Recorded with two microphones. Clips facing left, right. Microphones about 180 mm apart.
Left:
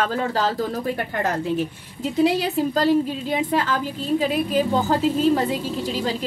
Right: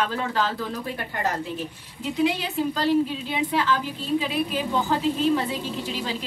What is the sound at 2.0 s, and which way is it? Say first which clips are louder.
A woman's voice: left 4 dB; 40° left (ahead or behind).